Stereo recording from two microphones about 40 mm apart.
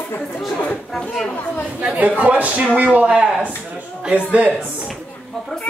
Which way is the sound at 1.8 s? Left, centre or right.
Right.